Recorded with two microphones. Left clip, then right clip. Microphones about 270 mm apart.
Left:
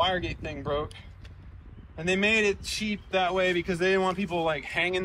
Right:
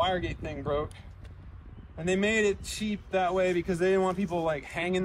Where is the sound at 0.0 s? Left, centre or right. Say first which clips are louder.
Left 2 dB; centre.